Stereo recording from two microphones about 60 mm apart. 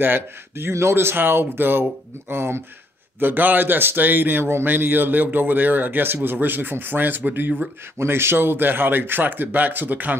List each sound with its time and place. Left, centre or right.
0.0 s a man's voice: right
3.2 s a man's voice: right